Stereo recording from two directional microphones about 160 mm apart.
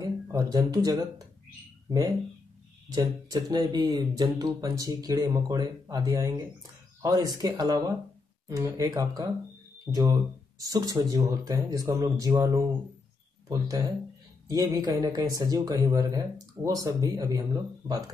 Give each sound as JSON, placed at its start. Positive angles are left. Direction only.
{"t": 0.0, "sound": "speech", "side_deg": -20}